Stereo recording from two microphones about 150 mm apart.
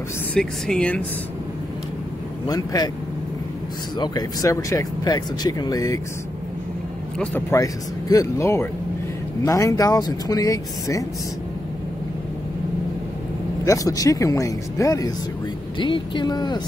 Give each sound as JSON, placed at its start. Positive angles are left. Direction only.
{"t": 0.3, "sound": "speech", "side_deg": 5}
{"t": 2.4, "sound": "speech", "side_deg": 25}
{"t": 4.0, "sound": "speech", "side_deg": 25}
{"t": 7.5, "sound": "speech", "side_deg": 20}
{"t": 13.7, "sound": "speech", "side_deg": 25}